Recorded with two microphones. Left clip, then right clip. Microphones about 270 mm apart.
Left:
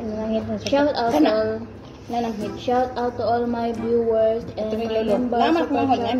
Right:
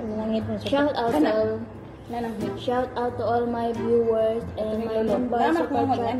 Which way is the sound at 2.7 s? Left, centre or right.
Centre.